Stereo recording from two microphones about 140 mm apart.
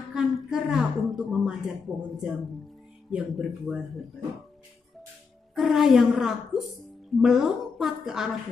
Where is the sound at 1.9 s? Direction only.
Centre (ahead or behind).